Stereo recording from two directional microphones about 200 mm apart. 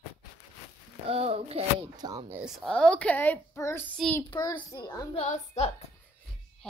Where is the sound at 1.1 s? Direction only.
30° right (ahead or behind).